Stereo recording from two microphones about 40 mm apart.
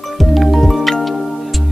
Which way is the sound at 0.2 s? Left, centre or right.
Centre.